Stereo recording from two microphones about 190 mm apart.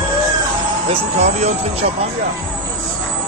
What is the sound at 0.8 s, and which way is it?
Speech, 35° right (ahead or behind).